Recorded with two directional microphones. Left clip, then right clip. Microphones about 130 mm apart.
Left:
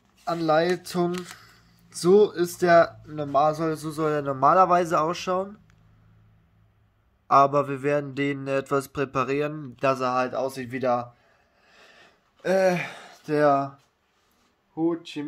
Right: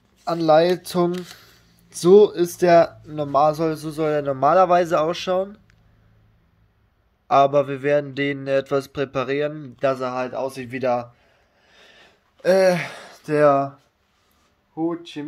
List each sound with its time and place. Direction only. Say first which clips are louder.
0.2 s speech: right 6 dB; 35° right (ahead or behind); by 3.7 s 15° right (ahead or behind)
3.7 s a man's voice: right 4 dB; centre (ahead or behind)
7.2 s a man's voice: right 3 dB; 5° left (ahead or behind)
11.6 s a sound: right 3 dB; 5° left (ahead or behind)
12.4 s speech: right 5 dB; 45° right (ahead or behind); by 13.7 s 30° right (ahead or behind)
14.7 s speech: right 1 dB; 15° right (ahead or behind)